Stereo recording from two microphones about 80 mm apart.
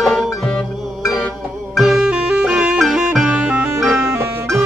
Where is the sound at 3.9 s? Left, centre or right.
Right.